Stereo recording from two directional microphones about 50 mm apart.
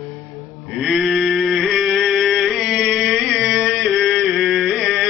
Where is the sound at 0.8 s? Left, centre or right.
Centre.